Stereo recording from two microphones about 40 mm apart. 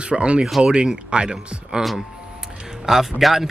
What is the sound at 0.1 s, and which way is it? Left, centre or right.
Speech, right.